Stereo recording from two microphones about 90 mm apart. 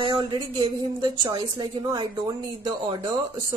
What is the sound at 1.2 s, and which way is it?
A woman's voice, 50° right (ahead or behind).